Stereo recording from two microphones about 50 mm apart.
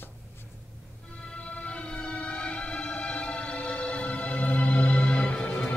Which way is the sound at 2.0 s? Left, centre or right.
Left.